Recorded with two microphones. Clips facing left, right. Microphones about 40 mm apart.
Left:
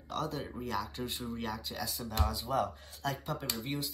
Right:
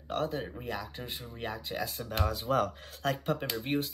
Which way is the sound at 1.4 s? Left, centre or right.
Right.